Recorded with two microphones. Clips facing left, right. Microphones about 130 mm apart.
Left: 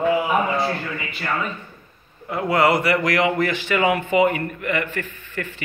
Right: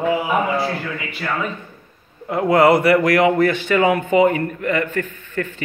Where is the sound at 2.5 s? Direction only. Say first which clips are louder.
Right 5 dB; 50° right (ahead or behind).